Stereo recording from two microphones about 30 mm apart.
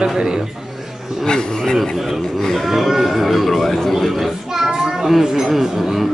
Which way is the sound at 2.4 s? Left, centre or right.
Centre.